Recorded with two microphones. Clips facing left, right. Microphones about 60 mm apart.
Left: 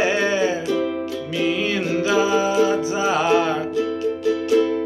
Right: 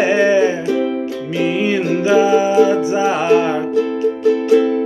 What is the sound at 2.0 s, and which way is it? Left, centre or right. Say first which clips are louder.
Music: right 6 dB; right.